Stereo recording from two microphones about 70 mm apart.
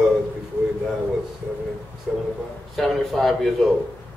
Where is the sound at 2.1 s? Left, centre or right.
Centre.